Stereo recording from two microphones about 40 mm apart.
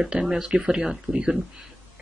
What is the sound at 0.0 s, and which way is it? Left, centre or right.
Speech, centre.